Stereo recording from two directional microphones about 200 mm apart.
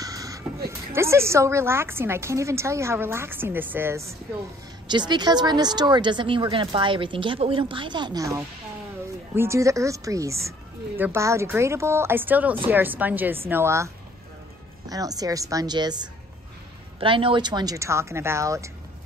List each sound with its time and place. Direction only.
0.0 s music: 15° right (ahead or behind)
0.7 s a woman's voice: 15° right (ahead or behind)
14.9 s a woman's voice: 20° right (ahead or behind)